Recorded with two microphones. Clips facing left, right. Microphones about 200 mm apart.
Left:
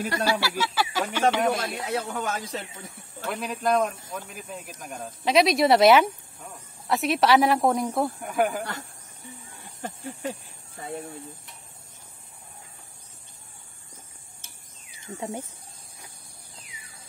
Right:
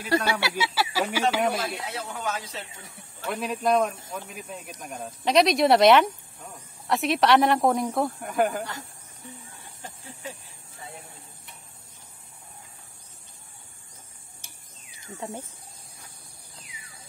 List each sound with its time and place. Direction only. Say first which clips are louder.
0.3 s speech: left 2 dB; 20° right (ahead or behind)
0.6 s a sound: even; 10° right (ahead or behind)
1.3 s speech: left 1 dB; centre (ahead or behind)
1.9 s speech: left 4 dB; 45° left (ahead or behind)
3.3 s speech: right 1 dB; centre (ahead or behind)
15.1 s speech: left 3 dB; 15° left (ahead or behind)